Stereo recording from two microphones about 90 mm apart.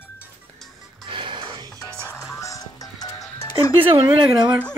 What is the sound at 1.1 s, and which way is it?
Music, 70° right (ahead or behind).